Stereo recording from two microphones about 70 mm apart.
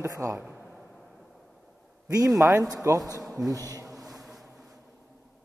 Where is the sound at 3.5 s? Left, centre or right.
Right.